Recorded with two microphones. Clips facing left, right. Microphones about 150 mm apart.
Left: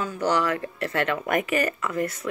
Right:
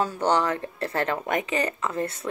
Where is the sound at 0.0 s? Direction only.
25° right (ahead or behind).